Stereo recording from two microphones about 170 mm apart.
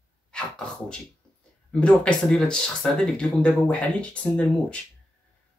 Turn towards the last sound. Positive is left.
turn(degrees=5)  # may be behind; listen again after turning